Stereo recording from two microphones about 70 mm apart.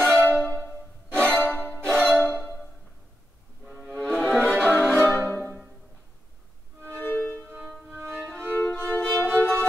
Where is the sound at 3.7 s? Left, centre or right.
Centre.